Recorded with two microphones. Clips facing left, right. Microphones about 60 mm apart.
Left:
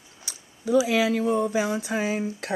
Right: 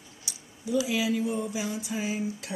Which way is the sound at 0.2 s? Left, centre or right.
Left.